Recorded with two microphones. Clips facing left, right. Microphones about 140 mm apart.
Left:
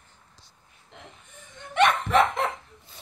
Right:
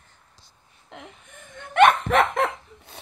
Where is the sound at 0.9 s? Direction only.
55° right (ahead or behind).